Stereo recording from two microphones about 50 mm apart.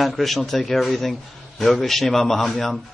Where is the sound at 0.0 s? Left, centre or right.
Centre.